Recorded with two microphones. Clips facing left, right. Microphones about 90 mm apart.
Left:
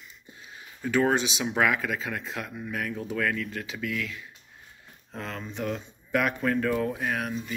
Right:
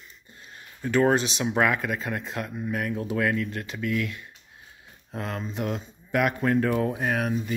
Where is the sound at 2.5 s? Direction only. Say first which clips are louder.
Right 4 dB; 10° right (ahead or behind).